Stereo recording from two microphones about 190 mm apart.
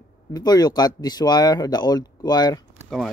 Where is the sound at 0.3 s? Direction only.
20° left (ahead or behind).